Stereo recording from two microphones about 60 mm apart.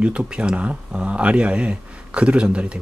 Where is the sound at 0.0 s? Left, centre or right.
Centre.